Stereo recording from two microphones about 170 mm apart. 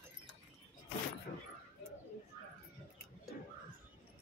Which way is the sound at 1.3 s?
75° left (ahead or behind).